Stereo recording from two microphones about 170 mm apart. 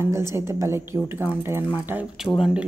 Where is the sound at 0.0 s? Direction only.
15° right (ahead or behind).